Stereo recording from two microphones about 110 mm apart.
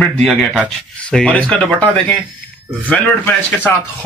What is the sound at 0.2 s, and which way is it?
Speech, centre (ahead or behind).